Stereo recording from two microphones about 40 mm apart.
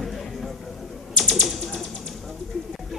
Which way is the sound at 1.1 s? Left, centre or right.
Centre.